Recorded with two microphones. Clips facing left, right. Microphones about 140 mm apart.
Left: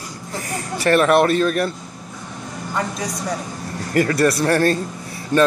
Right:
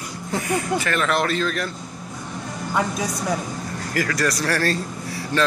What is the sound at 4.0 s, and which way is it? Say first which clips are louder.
Speech: left 6 dB; 30° left (ahead or behind).